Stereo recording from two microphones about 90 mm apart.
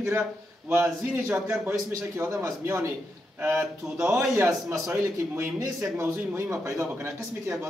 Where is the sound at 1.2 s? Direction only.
10° right (ahead or behind).